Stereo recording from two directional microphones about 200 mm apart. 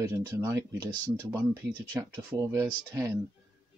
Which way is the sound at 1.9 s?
5° right (ahead or behind).